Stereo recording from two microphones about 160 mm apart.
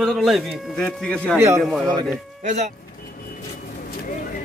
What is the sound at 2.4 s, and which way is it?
Speech, 45° right (ahead or behind).